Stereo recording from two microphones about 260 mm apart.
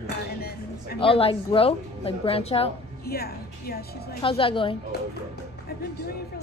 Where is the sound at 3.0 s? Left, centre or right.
Left.